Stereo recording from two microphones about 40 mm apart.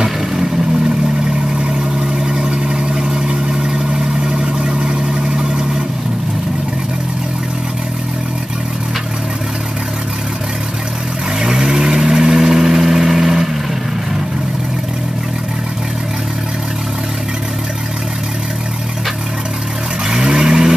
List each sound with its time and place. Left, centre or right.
0.0 s vehicle: centre
1.6 s vehicle: centre
11.3 s vehicle: centre
20.1 s vehicle: centre